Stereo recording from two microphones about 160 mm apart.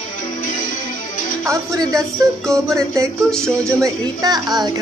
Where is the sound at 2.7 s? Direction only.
20° right (ahead or behind).